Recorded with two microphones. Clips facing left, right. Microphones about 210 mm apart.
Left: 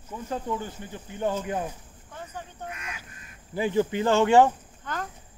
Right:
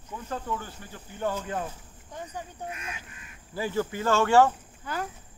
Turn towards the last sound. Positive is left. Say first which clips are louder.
# right 1 dB
turn(degrees=-10)  # may be behind; listen again after turning